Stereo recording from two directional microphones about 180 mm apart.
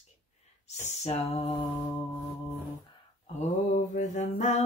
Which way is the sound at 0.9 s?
35° left (ahead or behind).